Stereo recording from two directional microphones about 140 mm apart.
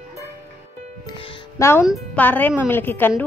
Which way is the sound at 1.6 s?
20° left (ahead or behind).